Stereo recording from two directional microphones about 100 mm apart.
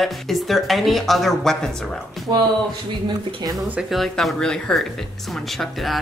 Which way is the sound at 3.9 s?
Centre (ahead or behind).